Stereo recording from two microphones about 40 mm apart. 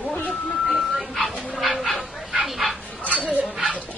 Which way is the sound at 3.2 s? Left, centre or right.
Right.